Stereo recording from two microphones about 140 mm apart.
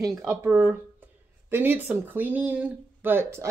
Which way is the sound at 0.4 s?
10° right (ahead or behind).